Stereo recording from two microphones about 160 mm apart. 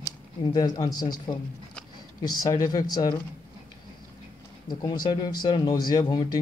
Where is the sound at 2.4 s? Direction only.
25° left (ahead or behind).